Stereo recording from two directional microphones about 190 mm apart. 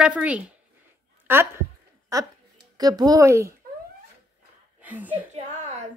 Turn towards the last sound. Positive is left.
turn(degrees=-10)  # may be behind; listen again after turning